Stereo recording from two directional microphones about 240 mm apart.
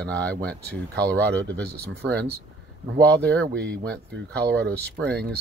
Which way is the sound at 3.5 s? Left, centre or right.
Centre.